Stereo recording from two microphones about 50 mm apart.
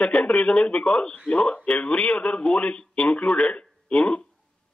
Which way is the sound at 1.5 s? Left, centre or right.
Left.